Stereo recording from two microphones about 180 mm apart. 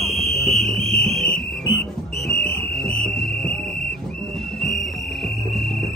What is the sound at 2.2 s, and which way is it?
Music, 65° left (ahead or behind).